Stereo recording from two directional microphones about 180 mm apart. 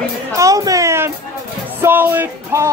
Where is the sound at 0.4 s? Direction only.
20° right (ahead or behind).